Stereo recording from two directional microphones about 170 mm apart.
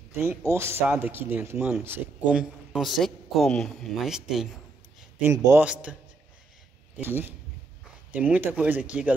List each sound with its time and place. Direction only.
0.1 s a man's voice: 15° right (ahead or behind)
5.2 s a man's voice: 15° right (ahead or behind)
7.0 s a man's voice: 10° right (ahead or behind)